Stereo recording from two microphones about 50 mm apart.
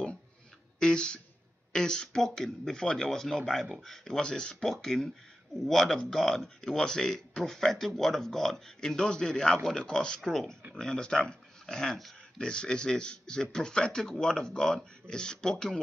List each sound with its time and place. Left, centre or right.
0.7 s speech: centre